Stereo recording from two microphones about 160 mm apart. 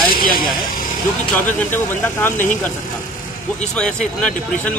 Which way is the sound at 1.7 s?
15° left (ahead or behind).